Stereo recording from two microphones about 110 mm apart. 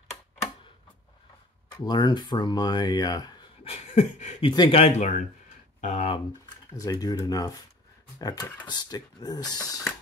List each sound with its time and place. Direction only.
1.8 s speech: 40° left (ahead or behind)
3.6 s a sound: 85° left
4.4 s a man's voice: 50° left (ahead or behind)
4.7 s speech: 75° left (ahead or behind)
6.8 s speech: 35° left (ahead or behind)